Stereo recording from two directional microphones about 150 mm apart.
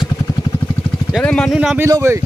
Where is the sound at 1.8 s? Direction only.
15° right (ahead or behind).